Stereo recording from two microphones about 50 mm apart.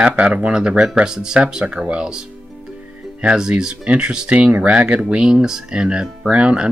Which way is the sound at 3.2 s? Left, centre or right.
Centre.